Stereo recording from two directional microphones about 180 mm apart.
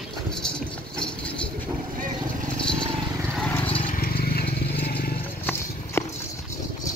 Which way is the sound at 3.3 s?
10° left (ahead or behind).